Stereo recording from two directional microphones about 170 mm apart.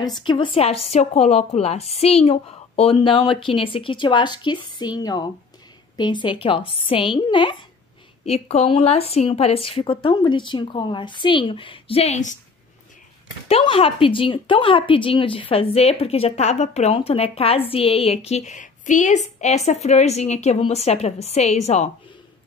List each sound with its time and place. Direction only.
0.2 s a woman's voice: 30° left (ahead or behind)
13.5 s speech: 30° left (ahead or behind)